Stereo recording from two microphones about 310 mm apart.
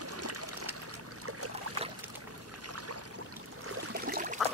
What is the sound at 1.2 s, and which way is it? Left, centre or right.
Boat, right.